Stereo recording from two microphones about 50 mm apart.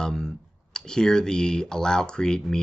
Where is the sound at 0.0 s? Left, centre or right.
Centre.